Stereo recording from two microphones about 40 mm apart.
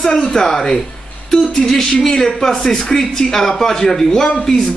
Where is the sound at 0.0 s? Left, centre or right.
Centre.